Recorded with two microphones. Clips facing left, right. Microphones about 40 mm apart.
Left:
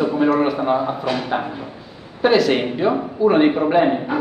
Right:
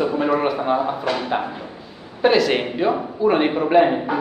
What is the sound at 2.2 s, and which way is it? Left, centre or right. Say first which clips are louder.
A woman's voice: left 1 dB; centre.